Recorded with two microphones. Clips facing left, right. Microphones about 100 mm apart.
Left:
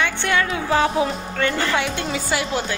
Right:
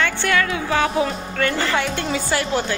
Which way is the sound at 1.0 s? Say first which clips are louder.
Even; 10° left (ahead or behind).